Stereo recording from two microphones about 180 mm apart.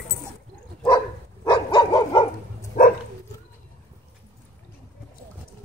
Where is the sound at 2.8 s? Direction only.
45° left (ahead or behind).